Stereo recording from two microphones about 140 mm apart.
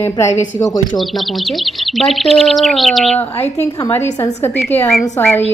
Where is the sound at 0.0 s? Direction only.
20° left (ahead or behind).